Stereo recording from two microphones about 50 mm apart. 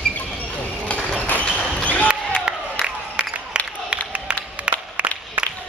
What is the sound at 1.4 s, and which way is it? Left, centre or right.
Basketball bounce, left.